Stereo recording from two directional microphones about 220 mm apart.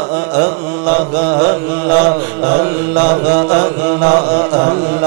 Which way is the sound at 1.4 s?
20° right (ahead or behind).